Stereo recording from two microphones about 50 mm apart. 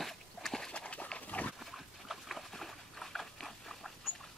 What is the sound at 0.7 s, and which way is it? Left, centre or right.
Dog, left.